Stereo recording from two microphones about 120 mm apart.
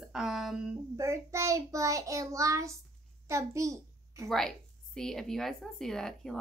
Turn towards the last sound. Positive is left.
turn(degrees=5)  # may be behind; listen again after turning